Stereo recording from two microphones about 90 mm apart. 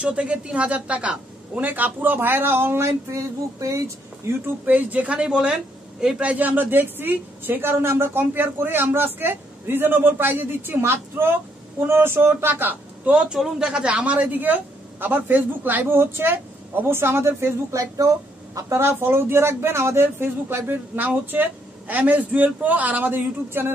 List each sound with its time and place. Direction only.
0.0 s a man's voice: 15° right (ahead or behind)
2.9 s speech: 35° right (ahead or behind)
4.6 s a man's voice: 15° right (ahead or behind)